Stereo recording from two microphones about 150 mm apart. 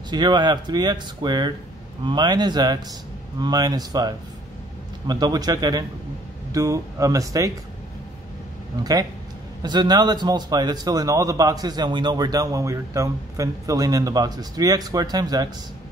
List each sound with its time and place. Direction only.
0.1 s a man's voice: 30° right (ahead or behind)
9.6 s a man's voice: 30° right (ahead or behind)